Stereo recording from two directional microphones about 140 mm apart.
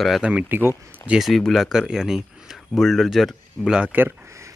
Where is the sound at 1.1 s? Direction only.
Centre (ahead or behind).